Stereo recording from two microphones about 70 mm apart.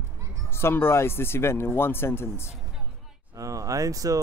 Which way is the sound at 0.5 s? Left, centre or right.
Left.